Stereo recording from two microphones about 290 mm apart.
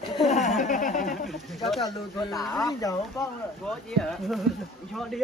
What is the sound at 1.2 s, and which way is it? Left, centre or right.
Speech, centre.